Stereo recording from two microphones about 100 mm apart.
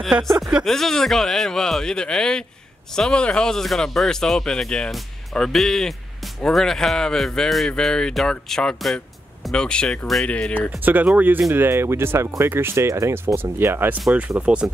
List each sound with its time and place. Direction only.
0.4 s speech: 10° right (ahead or behind)
0.7 s speech: 5° left (ahead or behind)
10.8 s speech: 20° right (ahead or behind)
14.4 s speech: 10° right (ahead or behind)